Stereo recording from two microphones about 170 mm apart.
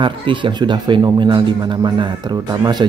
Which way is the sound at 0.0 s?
30° right (ahead or behind).